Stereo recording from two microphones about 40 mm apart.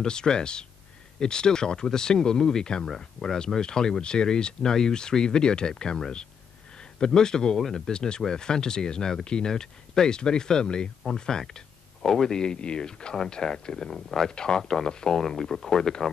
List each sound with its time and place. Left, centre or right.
0.0 s speech: centre